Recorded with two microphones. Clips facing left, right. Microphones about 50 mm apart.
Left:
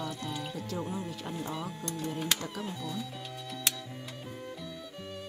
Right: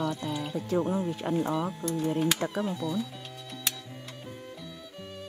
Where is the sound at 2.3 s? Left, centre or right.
Right.